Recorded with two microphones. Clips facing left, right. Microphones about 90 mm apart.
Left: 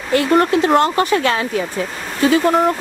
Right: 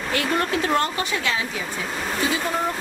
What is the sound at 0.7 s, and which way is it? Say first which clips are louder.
Speech: left 8 dB; 45° left (ahead or behind).